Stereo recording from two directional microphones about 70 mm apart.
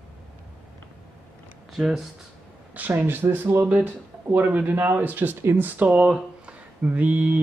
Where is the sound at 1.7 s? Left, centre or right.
Centre.